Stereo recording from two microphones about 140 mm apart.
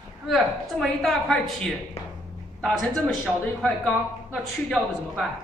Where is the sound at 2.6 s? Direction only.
Centre (ahead or behind).